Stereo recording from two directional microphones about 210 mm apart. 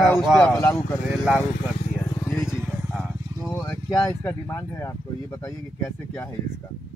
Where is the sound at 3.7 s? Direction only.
10° left (ahead or behind).